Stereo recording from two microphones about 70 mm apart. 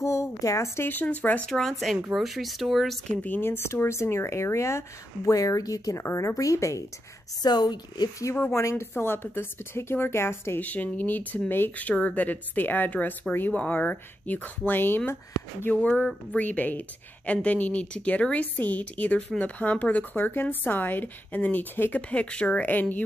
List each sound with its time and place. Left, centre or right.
0.0 s a sound: left
0.7 s speech: left
1.4 s speech: centre
3.3 s speech: left
6.0 s speech: left
7.4 s a woman's voice: left
8.5 s speech: left
10.6 s speech: left
15.7 s speech: centre